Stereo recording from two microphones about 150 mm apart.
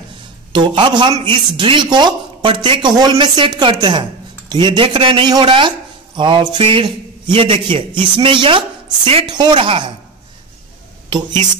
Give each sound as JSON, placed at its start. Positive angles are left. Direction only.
{"t": 0.5, "sound": "speech", "side_deg": -30}